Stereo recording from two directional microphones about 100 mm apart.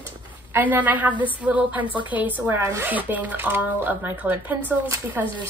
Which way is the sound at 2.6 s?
30° right (ahead or behind).